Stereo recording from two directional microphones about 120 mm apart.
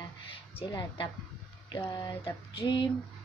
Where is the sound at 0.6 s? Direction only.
35° left (ahead or behind).